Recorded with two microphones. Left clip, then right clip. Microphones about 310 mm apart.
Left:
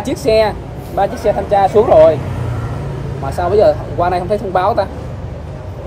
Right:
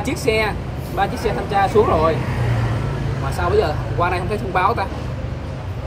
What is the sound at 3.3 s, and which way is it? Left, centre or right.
Speech, centre.